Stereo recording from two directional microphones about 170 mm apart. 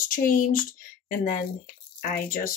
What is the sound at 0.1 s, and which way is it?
Speech, 55° left (ahead or behind).